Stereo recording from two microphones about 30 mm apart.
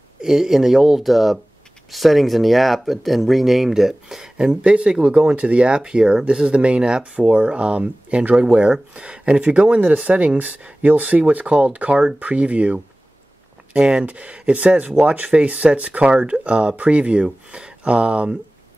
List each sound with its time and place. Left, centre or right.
0.2 s speech: centre
4.4 s speech: right
4.6 s speech: right
13.7 s speech: right